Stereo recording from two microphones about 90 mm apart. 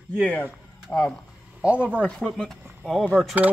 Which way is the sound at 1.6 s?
15° right (ahead or behind).